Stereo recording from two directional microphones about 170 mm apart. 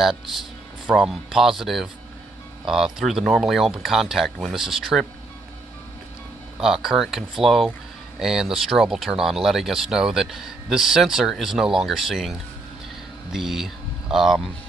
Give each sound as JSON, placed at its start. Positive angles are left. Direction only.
{"t": 0.0, "sound": "speech", "side_deg": 0}
{"t": 6.6, "sound": "speech", "side_deg": 0}